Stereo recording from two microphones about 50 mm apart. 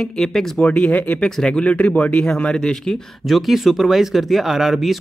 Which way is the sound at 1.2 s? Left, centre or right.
Centre.